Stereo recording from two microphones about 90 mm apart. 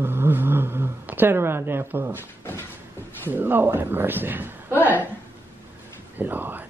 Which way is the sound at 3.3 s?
20° right (ahead or behind).